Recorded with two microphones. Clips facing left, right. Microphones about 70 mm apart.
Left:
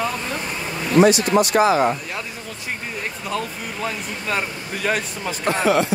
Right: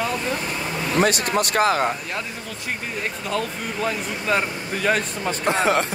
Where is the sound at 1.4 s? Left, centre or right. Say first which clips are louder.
Left 1 dB; right.